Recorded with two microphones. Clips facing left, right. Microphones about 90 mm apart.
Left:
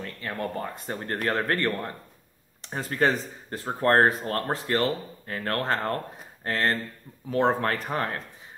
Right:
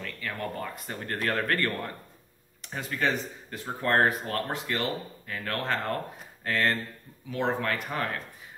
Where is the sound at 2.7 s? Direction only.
40° left (ahead or behind).